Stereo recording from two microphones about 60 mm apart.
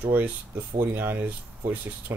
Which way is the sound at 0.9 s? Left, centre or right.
Right.